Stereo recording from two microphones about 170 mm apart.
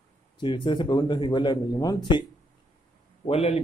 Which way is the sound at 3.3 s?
35° left (ahead or behind).